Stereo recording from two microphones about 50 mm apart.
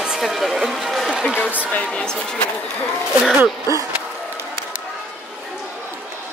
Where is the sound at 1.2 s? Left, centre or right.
Centre.